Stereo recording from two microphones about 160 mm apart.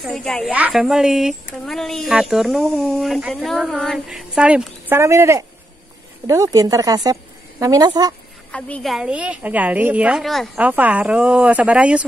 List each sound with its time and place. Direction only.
0.0 s speech: 5° left (ahead or behind)
4.9 s a woman's voice: 15° right (ahead or behind)
8.5 s speech: 10° left (ahead or behind)
10.6 s speech: 10° right (ahead or behind)